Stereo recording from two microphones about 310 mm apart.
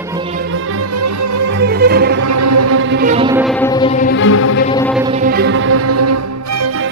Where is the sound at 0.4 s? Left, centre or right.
Right.